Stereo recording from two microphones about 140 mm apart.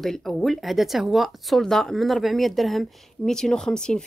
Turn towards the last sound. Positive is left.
turn(degrees=5)  # may be behind; listen again after turning